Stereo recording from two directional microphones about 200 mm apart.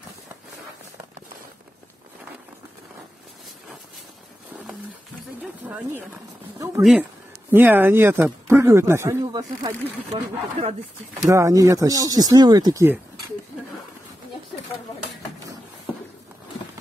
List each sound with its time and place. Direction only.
5.4 s a sound: 10° right (ahead or behind)
6.8 s speech: 5° right (ahead or behind); by 9.8 s 20° right (ahead or behind)
10.1 s speech: 30° right (ahead or behind)
11.2 s speech: 15° right (ahead or behind)